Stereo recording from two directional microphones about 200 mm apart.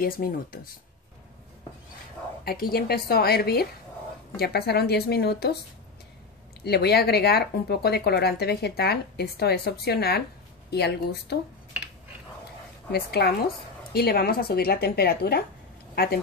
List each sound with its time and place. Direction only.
0.0 s speech: 45° left (ahead or behind)
2.4 s speech: 50° left (ahead or behind)
6.6 s speech: 55° left (ahead or behind)
12.9 s speech: 50° left (ahead or behind)